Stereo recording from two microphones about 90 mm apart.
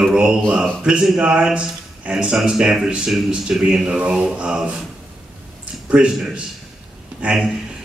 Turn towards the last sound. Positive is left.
turn(degrees=-10)  # may be behind; listen again after turning